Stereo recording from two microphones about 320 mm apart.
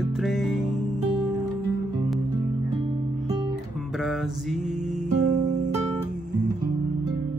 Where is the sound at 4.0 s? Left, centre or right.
Centre.